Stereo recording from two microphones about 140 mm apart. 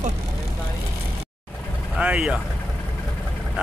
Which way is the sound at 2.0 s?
5° right (ahead or behind).